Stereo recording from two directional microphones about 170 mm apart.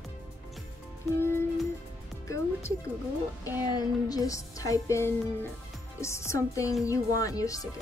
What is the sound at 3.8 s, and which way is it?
Speech, 20° left (ahead or behind).